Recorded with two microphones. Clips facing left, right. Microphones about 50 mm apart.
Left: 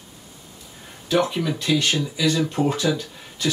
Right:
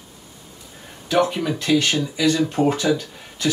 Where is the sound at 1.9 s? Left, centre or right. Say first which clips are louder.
Right 2 dB; right.